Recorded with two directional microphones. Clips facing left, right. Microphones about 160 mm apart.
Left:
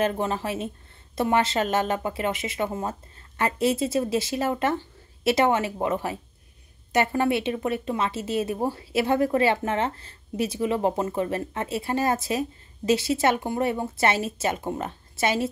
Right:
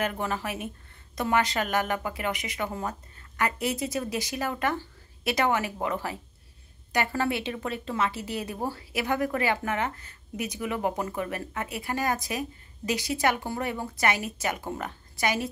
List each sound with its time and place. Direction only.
0.0 s speech: 25° left (ahead or behind)